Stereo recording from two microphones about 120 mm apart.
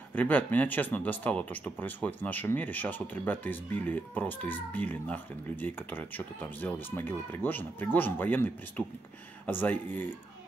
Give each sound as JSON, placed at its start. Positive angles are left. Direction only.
{"t": 0.1, "sound": "speech", "side_deg": 15}